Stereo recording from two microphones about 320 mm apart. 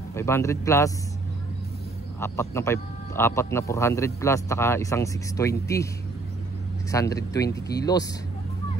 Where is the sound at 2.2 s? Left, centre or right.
Centre.